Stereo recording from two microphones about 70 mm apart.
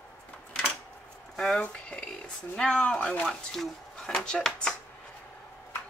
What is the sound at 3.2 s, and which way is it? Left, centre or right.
Speech, centre.